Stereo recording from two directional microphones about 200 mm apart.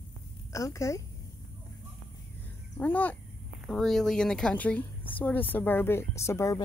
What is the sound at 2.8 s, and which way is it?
Speech, 10° left (ahead or behind).